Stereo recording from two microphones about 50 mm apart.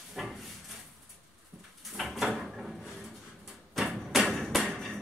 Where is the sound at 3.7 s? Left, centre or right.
Centre.